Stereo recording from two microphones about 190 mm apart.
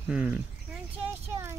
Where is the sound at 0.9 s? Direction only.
15° right (ahead or behind).